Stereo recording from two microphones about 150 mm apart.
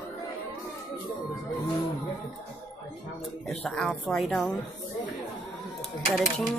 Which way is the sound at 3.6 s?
5° left (ahead or behind).